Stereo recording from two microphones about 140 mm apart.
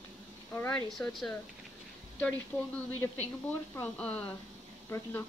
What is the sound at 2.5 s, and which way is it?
Speech, 15° left (ahead or behind).